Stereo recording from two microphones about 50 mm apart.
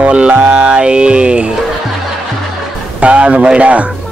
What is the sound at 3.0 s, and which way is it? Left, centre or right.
Speech, right.